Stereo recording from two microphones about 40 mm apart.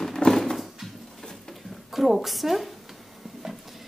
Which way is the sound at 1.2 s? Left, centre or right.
Centre.